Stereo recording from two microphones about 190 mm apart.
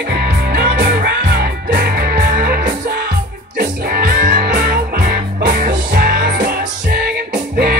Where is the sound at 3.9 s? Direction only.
50° right (ahead or behind).